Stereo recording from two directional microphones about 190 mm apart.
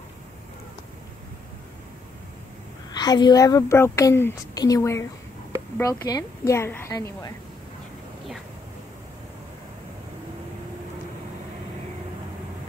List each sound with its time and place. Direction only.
2.9 s a woman's voice: 20° left (ahead or behind)